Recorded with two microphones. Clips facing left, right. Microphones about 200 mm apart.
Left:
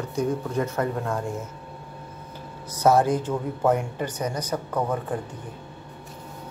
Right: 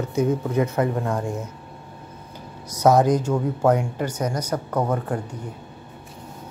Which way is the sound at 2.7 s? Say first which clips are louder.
Right 3 dB; 15° right (ahead or behind).